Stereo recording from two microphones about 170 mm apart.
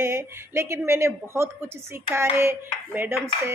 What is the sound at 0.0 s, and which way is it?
Speech, 15° right (ahead or behind).